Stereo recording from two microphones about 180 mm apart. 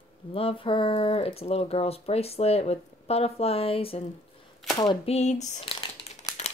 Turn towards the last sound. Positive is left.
turn(degrees=35)  # may be behind; listen again after turning